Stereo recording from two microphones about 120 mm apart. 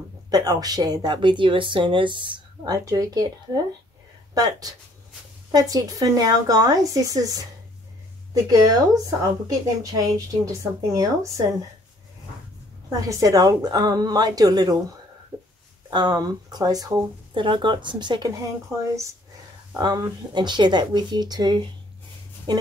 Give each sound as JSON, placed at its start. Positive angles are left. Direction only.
{"t": 0.3, "sound": "a woman's voice", "side_deg": -30}
{"t": 8.5, "sound": "a woman's voice", "side_deg": -30}
{"t": 13.0, "sound": "a woman's voice", "side_deg": -30}
{"t": 15.9, "sound": "a woman's voice", "side_deg": -35}
{"t": 17.3, "sound": "a woman's voice", "side_deg": -45}
{"t": 18.7, "sound": "a woman's voice", "side_deg": -25}
{"t": 19.8, "sound": "a woman's voice", "side_deg": -35}